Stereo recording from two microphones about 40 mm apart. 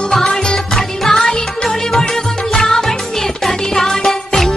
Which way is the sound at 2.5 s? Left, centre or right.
Centre.